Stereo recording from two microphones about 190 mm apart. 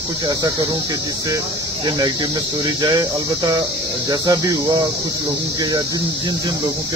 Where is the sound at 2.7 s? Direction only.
20° right (ahead or behind).